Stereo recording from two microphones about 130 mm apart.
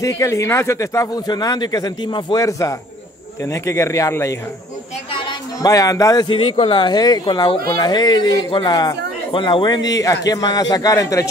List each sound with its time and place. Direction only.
0.0 s speech: 25° left (ahead or behind)
5.6 s speech: 25° left (ahead or behind)
6.3 s speech: 45° left (ahead or behind); by 11.2 s 25° left (ahead or behind)